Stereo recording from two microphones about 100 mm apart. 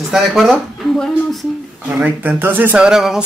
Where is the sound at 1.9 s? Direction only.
15° right (ahead or behind).